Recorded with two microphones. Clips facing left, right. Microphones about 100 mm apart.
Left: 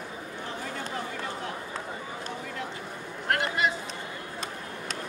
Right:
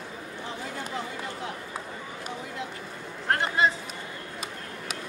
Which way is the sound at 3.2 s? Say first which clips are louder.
Right 2 dB; 30° right (ahead or behind).